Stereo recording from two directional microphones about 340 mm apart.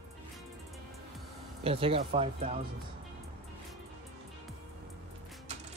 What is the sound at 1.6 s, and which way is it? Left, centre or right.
Speech, centre.